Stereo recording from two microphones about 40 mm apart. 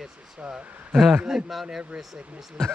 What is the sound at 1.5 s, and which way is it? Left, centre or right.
Speech, centre.